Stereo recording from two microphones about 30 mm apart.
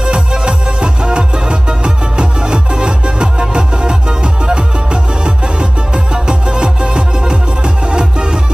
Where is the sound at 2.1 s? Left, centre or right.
Right.